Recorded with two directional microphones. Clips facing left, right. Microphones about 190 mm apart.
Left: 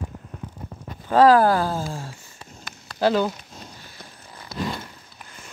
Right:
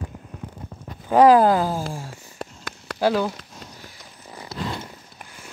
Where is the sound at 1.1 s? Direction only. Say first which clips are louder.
Right 1 dB; 20° right (ahead or behind).